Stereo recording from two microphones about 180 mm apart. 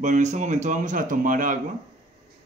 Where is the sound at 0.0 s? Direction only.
40° right (ahead or behind).